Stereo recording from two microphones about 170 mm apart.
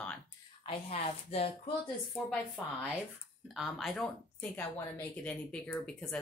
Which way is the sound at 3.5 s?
Centre (ahead or behind).